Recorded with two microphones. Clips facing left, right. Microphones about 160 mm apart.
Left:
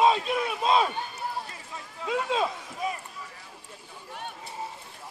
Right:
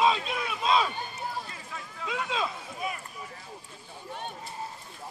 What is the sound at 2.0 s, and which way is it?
Run, 40° left (ahead or behind).